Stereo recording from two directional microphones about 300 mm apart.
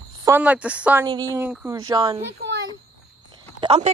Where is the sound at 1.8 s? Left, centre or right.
Centre.